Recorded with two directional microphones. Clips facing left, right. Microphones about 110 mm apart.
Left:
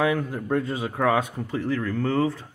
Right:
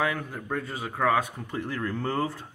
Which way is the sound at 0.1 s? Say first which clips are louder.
Left 7 dB; 20° left (ahead or behind).